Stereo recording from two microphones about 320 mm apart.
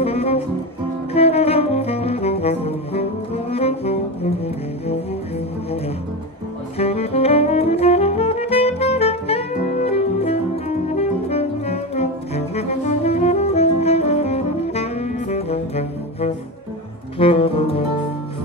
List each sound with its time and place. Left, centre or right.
0.0 s music: centre
1.1 s saxophone: centre
6.8 s saxophone: centre
17.2 s music: centre